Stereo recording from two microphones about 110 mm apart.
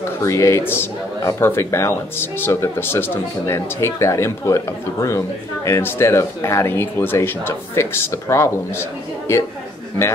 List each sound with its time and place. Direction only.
0.2 s a man's voice: 25° left (ahead or behind)